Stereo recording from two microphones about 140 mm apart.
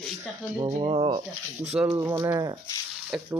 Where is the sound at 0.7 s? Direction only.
40° right (ahead or behind).